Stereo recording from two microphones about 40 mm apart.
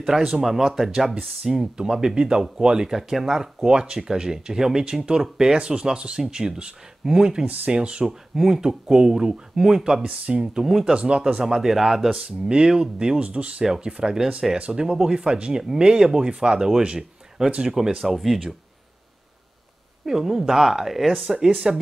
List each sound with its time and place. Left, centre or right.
0.0 s speech: centre
3.6 s speech: right
8.4 s speech: centre
10.0 s speech: right
10.4 s speech: centre
11.0 s speech: right
11.4 s speech: centre
12.1 s speech: right
13.2 s speech: right
13.7 s speech: right
14.0 s speech: centre
14.6 s speech: right
18.0 s a woman's voice: centre
20.1 s a woman's voice: centre